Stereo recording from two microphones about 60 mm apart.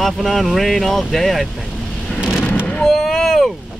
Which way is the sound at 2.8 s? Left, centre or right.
Centre.